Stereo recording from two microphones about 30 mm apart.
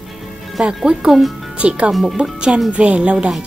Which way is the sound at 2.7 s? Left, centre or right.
Right.